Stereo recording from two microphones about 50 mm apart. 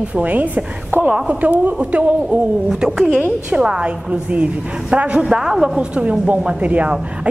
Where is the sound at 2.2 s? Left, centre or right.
Centre.